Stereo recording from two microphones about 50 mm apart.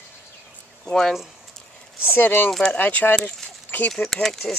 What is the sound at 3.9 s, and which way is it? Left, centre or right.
Speech, centre.